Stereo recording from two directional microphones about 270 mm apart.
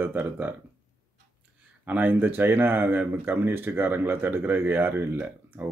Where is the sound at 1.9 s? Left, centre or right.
Centre.